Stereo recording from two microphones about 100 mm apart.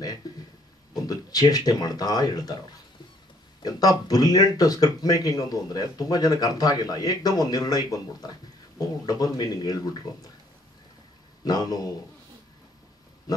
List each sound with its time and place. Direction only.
1.0 s speech: 40° left (ahead or behind)
3.6 s speech: 40° left (ahead or behind)
11.4 s speech: 40° left (ahead or behind)